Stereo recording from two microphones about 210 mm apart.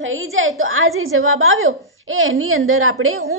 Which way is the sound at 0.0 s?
75° right (ahead or behind).